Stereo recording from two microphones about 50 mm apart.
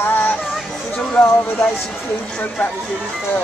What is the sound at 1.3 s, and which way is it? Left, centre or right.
Speech, left.